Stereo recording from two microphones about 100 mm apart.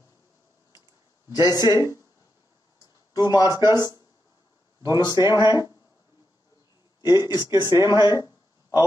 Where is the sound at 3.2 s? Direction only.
40° left (ahead or behind).